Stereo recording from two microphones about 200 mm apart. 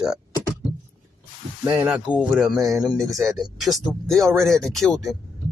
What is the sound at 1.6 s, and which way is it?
Speech, 10° right (ahead or behind).